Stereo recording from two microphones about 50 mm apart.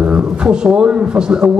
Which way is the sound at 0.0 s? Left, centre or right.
Right.